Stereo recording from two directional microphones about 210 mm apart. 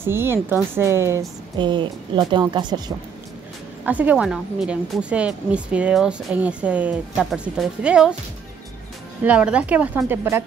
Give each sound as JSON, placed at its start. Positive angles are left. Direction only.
{"t": 0.0, "sound": "a woman's voice", "side_deg": -10}
{"t": 3.8, "sound": "a woman's voice", "side_deg": -10}
{"t": 9.2, "sound": "a woman's voice", "side_deg": -5}